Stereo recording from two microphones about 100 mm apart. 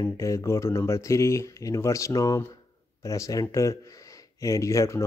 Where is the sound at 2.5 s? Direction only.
35° left (ahead or behind).